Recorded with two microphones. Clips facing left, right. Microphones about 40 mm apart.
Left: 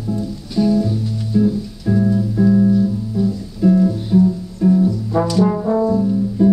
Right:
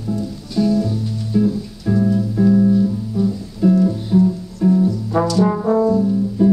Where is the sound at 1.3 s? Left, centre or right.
Centre.